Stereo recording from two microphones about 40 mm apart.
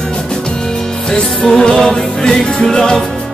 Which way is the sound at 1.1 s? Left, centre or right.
Left.